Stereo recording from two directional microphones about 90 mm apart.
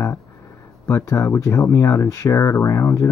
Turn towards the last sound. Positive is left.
turn(degrees=30)  # may be behind; listen again after turning